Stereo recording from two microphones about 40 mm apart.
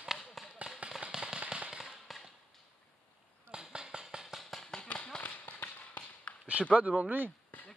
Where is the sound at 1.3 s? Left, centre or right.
Right.